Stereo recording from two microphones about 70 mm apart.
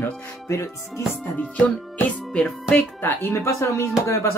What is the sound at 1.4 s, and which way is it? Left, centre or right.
Music, left.